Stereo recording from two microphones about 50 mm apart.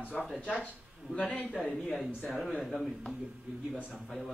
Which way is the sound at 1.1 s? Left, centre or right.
Left.